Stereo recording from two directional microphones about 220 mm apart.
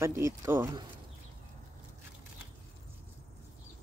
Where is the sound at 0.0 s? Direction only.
10° right (ahead or behind).